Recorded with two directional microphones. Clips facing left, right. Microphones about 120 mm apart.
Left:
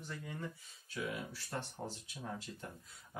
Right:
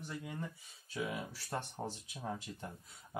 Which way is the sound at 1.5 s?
20° right (ahead or behind).